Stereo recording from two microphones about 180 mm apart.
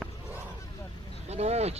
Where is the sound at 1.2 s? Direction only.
35° right (ahead or behind).